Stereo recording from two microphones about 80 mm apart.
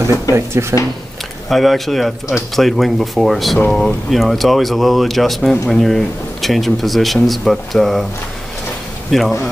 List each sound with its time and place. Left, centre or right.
0.3 s speech: right
1.5 s speech: centre
9.1 s speech: centre